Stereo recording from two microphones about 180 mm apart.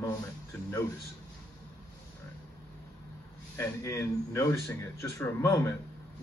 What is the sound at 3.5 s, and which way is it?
A man's voice, 15° left (ahead or behind).